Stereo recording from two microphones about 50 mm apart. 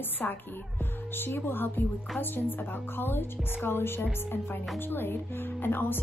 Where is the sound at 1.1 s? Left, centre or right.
Left.